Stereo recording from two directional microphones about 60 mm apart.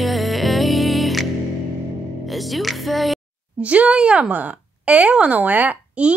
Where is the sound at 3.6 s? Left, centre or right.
Right.